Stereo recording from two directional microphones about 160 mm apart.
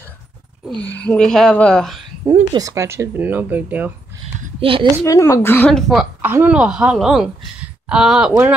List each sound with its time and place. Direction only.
0.7 s a woman's voice: 10° left (ahead or behind)
2.5 s speech: 20° right (ahead or behind)
4.6 s speech: 35° right (ahead or behind)
5.0 s a woman's voice: 20° left (ahead or behind); by 6.0 s centre (ahead or behind)
6.2 s a woman's voice: 10° right (ahead or behind)